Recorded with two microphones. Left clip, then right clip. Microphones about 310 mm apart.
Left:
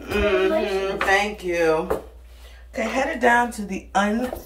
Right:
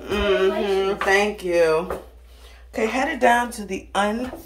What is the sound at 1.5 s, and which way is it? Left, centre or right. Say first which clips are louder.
Speech: right 1 dB; centre.